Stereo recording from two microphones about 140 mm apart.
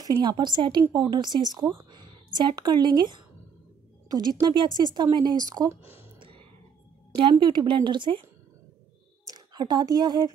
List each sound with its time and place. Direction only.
0.0 s speech: 30° right (ahead or behind)
6.1 s a sound: 35° right (ahead or behind)
7.2 s speech: 35° right (ahead or behind)
9.3 s a woman's voice: 30° right (ahead or behind)